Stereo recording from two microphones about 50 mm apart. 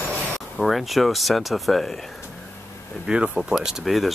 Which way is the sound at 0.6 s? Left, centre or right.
Centre.